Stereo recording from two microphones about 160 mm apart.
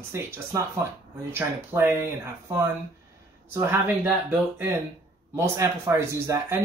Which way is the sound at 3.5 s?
15° right (ahead or behind).